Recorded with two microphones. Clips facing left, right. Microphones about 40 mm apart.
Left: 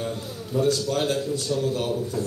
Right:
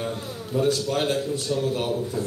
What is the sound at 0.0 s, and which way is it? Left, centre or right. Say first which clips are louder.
A man's voice: even; right.